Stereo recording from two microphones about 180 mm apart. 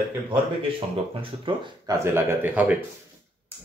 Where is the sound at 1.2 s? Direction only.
25° right (ahead or behind).